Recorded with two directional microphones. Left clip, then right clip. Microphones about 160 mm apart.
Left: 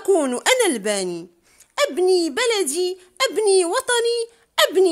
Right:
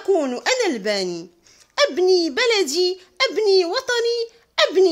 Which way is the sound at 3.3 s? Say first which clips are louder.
Even; 15° left (ahead or behind).